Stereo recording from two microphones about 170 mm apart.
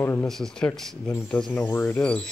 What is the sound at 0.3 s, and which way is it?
Speech, 5° left (ahead or behind).